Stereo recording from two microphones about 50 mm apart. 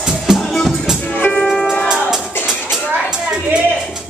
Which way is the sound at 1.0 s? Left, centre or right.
Left.